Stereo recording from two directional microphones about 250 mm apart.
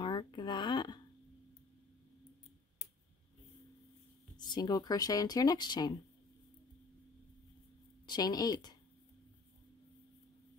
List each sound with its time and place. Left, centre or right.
0.0 s a sound: centre
4.4 s speech: centre
8.1 s speech: centre